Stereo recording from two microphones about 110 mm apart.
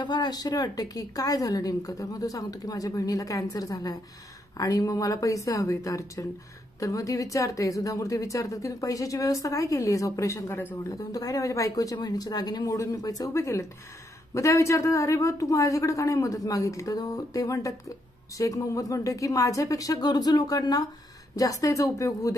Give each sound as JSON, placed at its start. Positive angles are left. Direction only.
{"t": 0.0, "sound": "a woman's voice", "side_deg": 40}
{"t": 10.8, "sound": "a woman's voice", "side_deg": 30}